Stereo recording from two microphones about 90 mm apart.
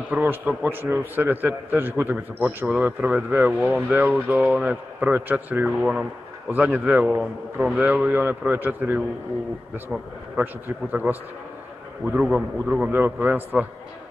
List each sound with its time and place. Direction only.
0.2 s a man's voice: 20° right (ahead or behind)
3.5 s speech: centre (ahead or behind)
3.9 s a man's voice: 15° right (ahead or behind)
5.7 s a man's voice: 5° right (ahead or behind)
12.2 s a man's voice: 10° right (ahead or behind)